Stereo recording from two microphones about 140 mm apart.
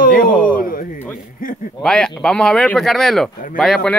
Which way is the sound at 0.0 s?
90° left.